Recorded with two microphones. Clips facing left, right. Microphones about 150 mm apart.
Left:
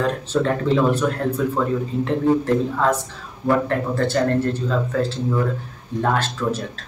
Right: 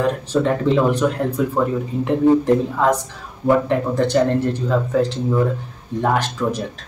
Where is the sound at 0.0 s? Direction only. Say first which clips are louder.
Right 2 dB; 10° right (ahead or behind).